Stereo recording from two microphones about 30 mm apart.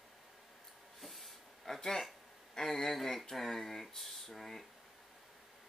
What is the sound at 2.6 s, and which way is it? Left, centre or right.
Speech, centre.